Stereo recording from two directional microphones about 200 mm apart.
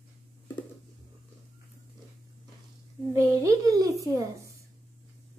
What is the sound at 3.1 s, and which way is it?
A child's voice, 15° right (ahead or behind).